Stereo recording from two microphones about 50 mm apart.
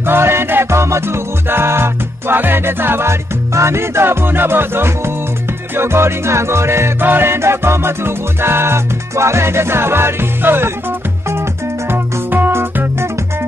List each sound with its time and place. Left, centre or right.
0.0 s music: right
1.5 s music: right
7.0 s music: right
11.9 s music: right